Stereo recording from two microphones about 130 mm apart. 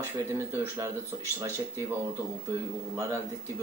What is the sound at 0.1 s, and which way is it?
Speech, 20° right (ahead or behind).